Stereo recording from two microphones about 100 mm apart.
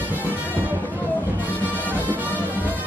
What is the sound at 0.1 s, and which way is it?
Music, 20° right (ahead or behind).